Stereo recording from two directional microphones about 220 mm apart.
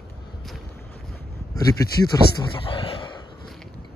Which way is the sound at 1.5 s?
15° left (ahead or behind).